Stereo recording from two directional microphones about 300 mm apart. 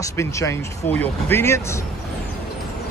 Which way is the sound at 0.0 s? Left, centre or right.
Centre.